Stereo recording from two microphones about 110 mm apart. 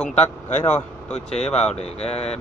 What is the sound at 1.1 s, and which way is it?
Speech, 75° left (ahead or behind).